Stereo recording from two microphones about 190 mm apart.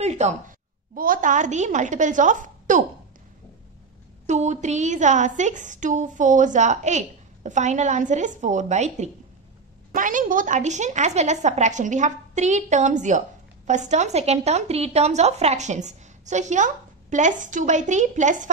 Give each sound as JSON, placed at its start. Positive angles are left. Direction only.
{"t": 0.0, "sound": "a woman's voice", "side_deg": -35}
{"t": 4.3, "sound": "a woman's voice", "side_deg": -40}